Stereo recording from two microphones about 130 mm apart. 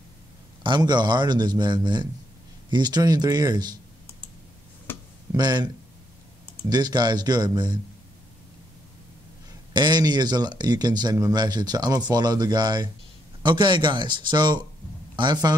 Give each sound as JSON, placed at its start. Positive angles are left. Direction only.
{"t": 0.7, "sound": "speech", "side_deg": -35}
{"t": 5.3, "sound": "speech", "side_deg": -30}
{"t": 6.7, "sound": "speech", "side_deg": -30}
{"t": 9.8, "sound": "speech", "side_deg": -35}